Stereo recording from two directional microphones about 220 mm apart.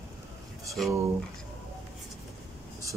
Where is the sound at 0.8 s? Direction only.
Centre (ahead or behind).